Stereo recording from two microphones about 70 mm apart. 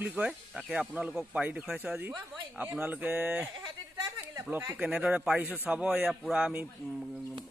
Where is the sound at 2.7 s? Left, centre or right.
Right.